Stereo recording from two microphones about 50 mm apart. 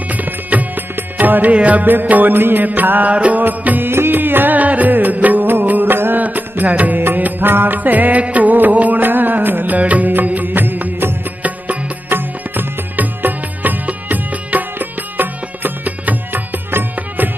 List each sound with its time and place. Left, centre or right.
0.1 s music: right
3.4 s music: right
6.2 s music: right
11.4 s music: right